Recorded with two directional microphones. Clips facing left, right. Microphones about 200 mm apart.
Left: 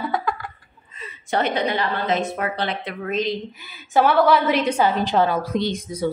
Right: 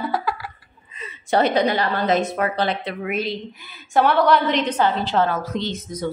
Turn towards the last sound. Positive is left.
turn(degrees=10)  # may be behind; listen again after turning